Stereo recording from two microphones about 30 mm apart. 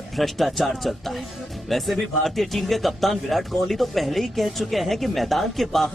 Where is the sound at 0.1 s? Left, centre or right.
Centre.